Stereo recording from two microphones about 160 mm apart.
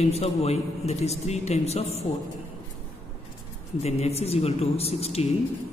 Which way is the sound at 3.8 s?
40° left (ahead or behind).